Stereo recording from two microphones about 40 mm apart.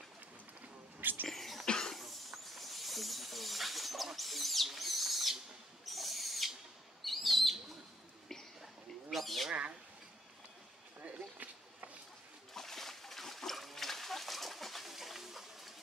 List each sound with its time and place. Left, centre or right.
1.2 s a sound: centre
1.7 s cough: centre
2.0 s snake: centre
5.9 s owl: centre
7.1 s bird: centre
9.1 s bird: centre
9.5 s a sound: right
11.1 s a sound: right
12.5 s splash: centre